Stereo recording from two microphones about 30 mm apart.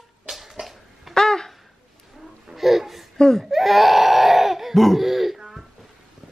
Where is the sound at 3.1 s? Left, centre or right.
Centre.